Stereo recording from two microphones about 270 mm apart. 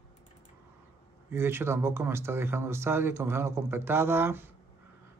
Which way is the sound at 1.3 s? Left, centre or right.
Centre.